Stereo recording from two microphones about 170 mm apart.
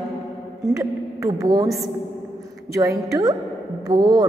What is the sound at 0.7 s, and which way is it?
Speech, 20° right (ahead or behind).